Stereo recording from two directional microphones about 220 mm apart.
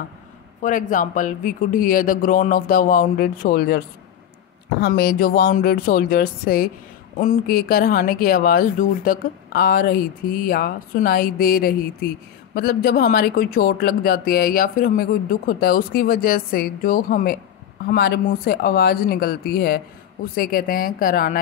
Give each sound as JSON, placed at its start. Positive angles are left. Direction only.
{"t": 0.6, "sound": "speech", "side_deg": 35}